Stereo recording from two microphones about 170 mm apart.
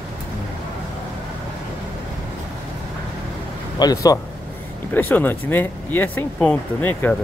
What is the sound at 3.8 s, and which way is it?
Speech, 20° left (ahead or behind).